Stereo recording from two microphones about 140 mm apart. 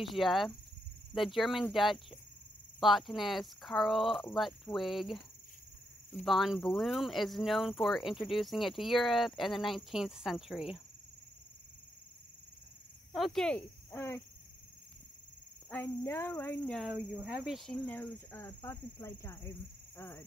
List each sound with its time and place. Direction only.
0.0 s speech: centre (ahead or behind)
6.2 s speech: centre (ahead or behind)
13.1 s speech: centre (ahead or behind)
13.9 s speech: 15° left (ahead or behind)
15.7 s speech: 15° left (ahead or behind)
16.7 s speech: 5° right (ahead or behind)
17.8 s speech: 15° left (ahead or behind)